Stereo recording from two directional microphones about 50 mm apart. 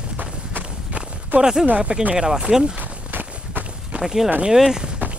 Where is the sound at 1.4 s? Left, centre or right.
Centre.